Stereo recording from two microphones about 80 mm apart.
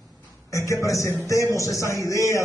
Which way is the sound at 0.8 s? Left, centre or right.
Left.